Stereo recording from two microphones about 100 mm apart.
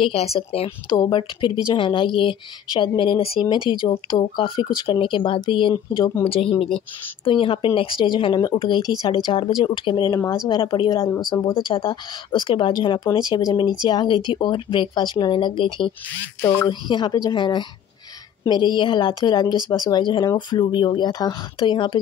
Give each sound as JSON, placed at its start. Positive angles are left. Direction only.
{"t": 0.0, "sound": "speech", "side_deg": 85}
{"t": 0.4, "sound": "speech", "side_deg": 75}
{"t": 0.8, "sound": "speech", "side_deg": 50}
{"t": 6.2, "sound": "speech", "side_deg": 65}
{"t": 7.2, "sound": "speech", "side_deg": 60}
{"t": 11.2, "sound": "speech", "side_deg": 45}
{"t": 16.3, "sound": "speech", "side_deg": 25}
{"t": 16.6, "sound": "speech", "side_deg": 50}